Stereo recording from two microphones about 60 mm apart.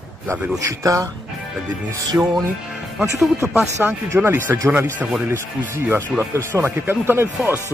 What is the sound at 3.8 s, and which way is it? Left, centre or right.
Speech, right.